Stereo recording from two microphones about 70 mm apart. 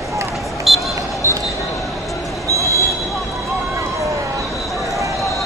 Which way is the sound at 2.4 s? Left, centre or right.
Right.